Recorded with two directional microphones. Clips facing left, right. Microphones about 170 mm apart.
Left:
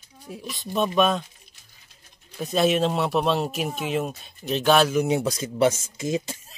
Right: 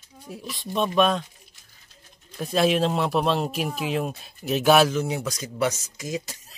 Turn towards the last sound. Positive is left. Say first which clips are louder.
# left 5 dB
turn(degrees=25)  # may be behind; listen again after turning